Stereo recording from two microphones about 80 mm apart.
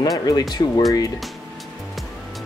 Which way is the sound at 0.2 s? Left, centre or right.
Left.